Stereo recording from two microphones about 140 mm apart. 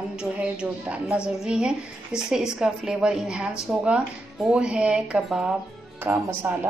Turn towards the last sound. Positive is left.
turn(degrees=-15)  # may be behind; listen again after turning